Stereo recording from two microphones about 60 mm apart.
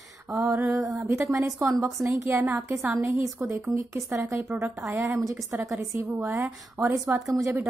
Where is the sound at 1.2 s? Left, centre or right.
Right.